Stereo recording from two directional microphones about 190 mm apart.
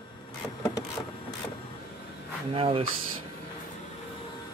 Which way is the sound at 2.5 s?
30° right (ahead or behind).